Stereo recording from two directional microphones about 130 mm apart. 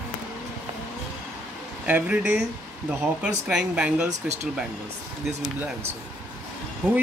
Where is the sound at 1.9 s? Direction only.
10° right (ahead or behind).